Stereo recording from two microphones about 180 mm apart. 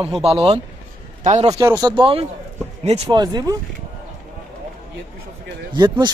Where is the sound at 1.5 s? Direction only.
20° right (ahead or behind).